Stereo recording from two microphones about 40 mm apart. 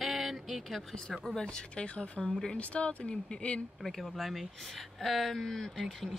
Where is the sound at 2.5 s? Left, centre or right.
Left.